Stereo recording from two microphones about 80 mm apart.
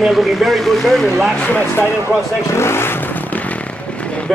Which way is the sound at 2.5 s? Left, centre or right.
Left.